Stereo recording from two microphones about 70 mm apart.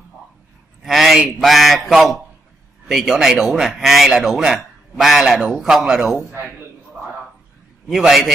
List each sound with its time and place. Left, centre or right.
0.8 s a sound: centre
1.4 s speech: centre
7.9 s speech: centre